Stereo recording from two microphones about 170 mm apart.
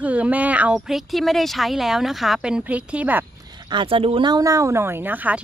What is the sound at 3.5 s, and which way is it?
Speech, 25° right (ahead or behind).